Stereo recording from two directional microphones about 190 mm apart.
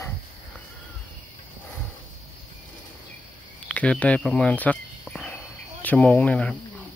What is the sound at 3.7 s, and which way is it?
Cricket, 5° left (ahead or behind).